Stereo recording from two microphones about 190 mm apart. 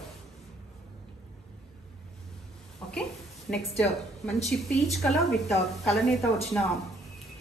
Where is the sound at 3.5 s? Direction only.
50° left (ahead or behind).